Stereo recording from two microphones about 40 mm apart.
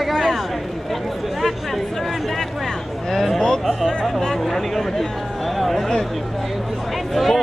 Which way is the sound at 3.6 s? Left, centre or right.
Centre.